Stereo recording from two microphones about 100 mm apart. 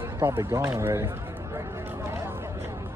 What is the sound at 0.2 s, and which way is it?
Speech, 25° right (ahead or behind).